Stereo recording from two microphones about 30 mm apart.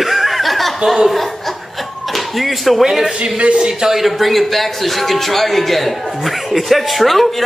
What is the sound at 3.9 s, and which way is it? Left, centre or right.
A woman's voice, centre.